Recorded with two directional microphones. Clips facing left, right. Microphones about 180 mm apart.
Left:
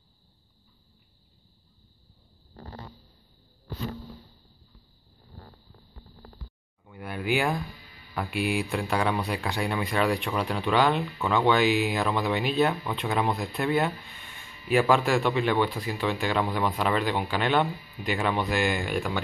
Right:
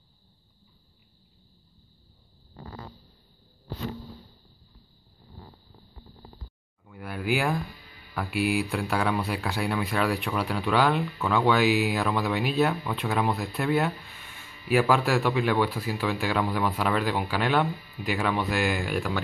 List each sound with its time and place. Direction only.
2.5 s fart: 40° left (ahead or behind)
6.8 s a sound: centre (ahead or behind)
8.1 s speech: centre (ahead or behind)